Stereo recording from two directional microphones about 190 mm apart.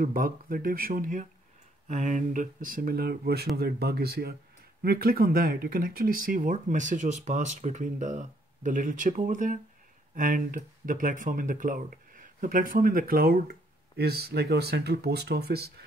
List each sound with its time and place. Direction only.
0.0 s speech: 50° right (ahead or behind)